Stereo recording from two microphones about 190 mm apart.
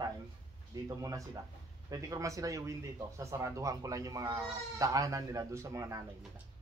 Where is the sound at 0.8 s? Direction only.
15° right (ahead or behind).